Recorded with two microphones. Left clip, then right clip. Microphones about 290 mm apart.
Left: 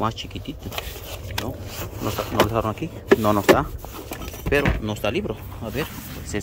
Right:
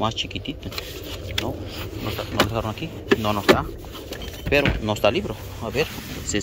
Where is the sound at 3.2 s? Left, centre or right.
Left.